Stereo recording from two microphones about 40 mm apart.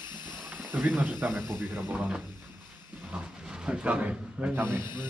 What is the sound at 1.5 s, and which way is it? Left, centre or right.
Speech, right.